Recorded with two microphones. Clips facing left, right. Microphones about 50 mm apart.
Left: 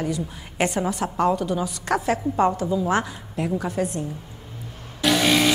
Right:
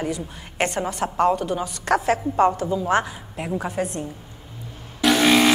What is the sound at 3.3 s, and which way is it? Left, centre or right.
Speech, centre.